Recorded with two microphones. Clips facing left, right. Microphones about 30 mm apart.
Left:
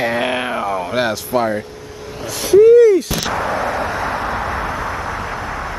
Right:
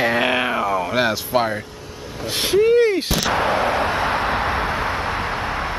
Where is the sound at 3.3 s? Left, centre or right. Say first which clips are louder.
Right 3 dB; right.